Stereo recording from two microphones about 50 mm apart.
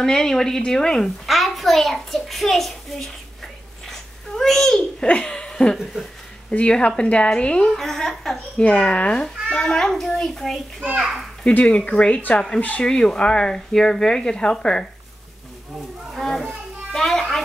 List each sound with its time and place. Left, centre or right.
0.0 s speech: centre
1.2 s a child's voice: centre
3.8 s babbling: centre
5.0 s a woman's voice: centre
7.7 s speech: centre
8.5 s speech: left
11.5 s a woman's voice: left
12.8 s speech: centre
16.2 s a child's voice: centre
16.9 s music: centre